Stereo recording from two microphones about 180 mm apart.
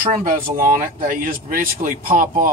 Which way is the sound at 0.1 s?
50° right (ahead or behind).